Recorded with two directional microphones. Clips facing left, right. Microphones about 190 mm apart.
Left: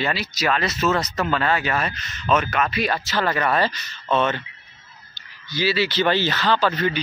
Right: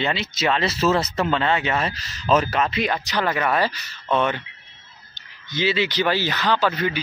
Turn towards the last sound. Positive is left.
turn(degrees=-10)  # may be behind; listen again after turning